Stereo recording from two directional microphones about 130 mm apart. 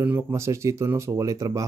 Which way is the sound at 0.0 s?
20° right (ahead or behind).